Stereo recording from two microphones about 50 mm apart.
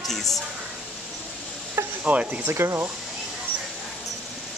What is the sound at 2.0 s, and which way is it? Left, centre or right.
Speech, right.